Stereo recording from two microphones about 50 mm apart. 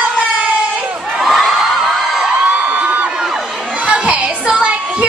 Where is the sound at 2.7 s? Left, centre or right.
Right.